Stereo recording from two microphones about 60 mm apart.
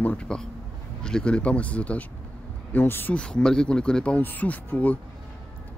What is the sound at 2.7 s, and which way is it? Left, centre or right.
Speech, left.